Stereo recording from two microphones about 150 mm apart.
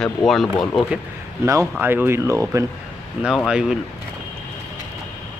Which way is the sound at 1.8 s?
15° right (ahead or behind).